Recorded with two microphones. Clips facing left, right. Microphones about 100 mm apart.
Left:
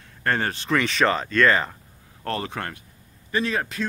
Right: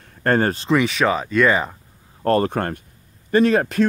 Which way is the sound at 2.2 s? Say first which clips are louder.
Right 10 dB; 45° right (ahead or behind).